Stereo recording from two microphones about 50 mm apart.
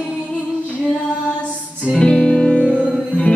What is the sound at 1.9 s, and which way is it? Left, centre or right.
Music, left.